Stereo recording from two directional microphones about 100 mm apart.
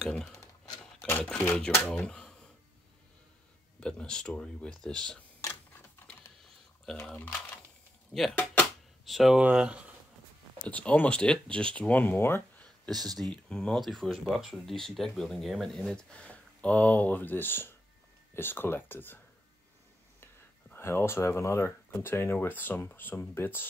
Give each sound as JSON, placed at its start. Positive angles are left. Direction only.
{"t": 0.0, "sound": "speech", "side_deg": 5}
{"t": 0.3, "sound": "a sound", "side_deg": 30}
{"t": 1.2, "sound": "speech", "side_deg": 15}
{"t": 1.9, "sound": "speech", "side_deg": 5}
{"t": 3.8, "sound": "speech", "side_deg": 5}
{"t": 7.2, "sound": "typing", "side_deg": 20}
{"t": 8.1, "sound": "speech", "side_deg": 0}
{"t": 10.6, "sound": "speech", "side_deg": 15}
{"t": 12.6, "sound": "a sound", "side_deg": 5}
{"t": 13.2, "sound": "speech", "side_deg": 10}
{"t": 20.7, "sound": "speech", "side_deg": 25}